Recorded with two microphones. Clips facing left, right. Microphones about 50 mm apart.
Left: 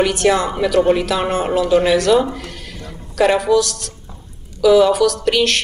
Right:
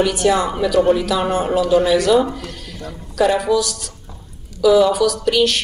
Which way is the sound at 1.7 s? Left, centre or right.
Left.